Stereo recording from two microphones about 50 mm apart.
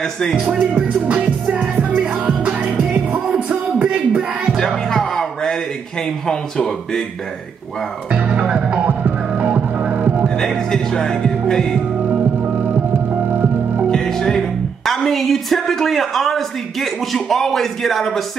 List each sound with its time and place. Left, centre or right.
0.0 s music: centre
0.4 s music: right
4.6 s a sound: centre
6.2 s music: centre
8.1 s music: right
8.7 s music: right
9.3 s organ: right
10.2 s music: centre
13.8 s music: centre
14.9 s speech: centre